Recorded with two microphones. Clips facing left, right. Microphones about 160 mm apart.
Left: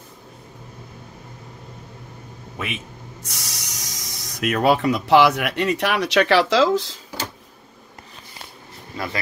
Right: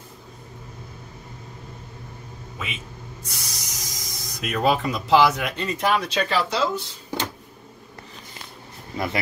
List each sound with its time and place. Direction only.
3.3 s speech: 70° left (ahead or behind); by 7.0 s 90° left
8.9 s speech: 20° right (ahead or behind)